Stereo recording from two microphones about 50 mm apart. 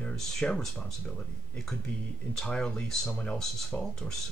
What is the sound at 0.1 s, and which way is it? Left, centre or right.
Speech, centre.